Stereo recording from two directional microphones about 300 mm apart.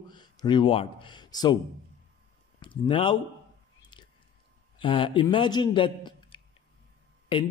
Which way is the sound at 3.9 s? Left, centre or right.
Centre.